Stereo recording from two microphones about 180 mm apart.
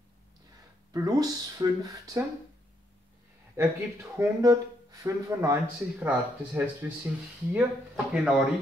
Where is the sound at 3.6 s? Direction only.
15° right (ahead or behind).